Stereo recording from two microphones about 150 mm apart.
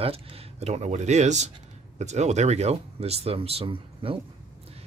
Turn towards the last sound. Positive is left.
turn(degrees=-35)  # may be behind; listen again after turning